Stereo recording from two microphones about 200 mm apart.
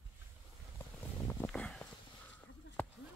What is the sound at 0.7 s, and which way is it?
Vehicle, 15° left (ahead or behind).